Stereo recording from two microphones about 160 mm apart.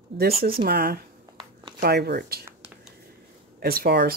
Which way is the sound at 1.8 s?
90° right.